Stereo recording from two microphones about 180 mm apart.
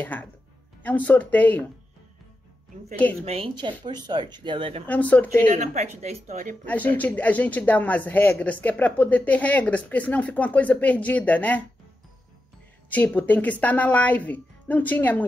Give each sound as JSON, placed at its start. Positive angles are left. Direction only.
{"t": 0.0, "sound": "speech", "side_deg": 10}
{"t": 3.3, "sound": "speech", "side_deg": -30}
{"t": 4.8, "sound": "speech", "side_deg": 10}
{"t": 5.5, "sound": "speech", "side_deg": -40}
{"t": 6.6, "sound": "speech", "side_deg": 10}
{"t": 12.9, "sound": "speech", "side_deg": 10}